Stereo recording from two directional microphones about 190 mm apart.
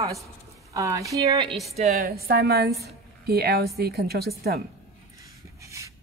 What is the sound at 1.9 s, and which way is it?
A woman's voice, 55° right (ahead or behind).